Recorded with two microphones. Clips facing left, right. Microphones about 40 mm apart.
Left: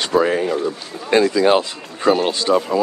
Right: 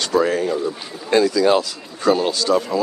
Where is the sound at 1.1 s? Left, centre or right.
Left.